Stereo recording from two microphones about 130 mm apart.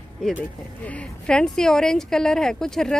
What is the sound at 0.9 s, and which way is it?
Speech, 10° left (ahead or behind).